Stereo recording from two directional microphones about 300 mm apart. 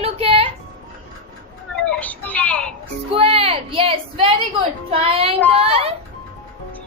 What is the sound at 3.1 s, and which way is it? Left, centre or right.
A woman's voice, centre.